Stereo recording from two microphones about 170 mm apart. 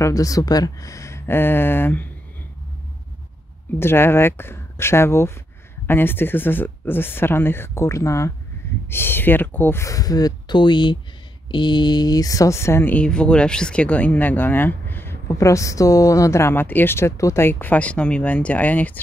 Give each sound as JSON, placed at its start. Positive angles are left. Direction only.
{"t": 0.0, "sound": "speech", "side_deg": 20}
{"t": 3.8, "sound": "speech", "side_deg": 15}